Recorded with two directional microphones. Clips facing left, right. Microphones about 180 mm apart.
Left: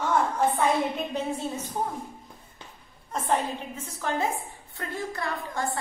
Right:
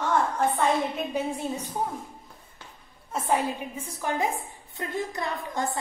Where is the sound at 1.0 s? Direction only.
10° right (ahead or behind).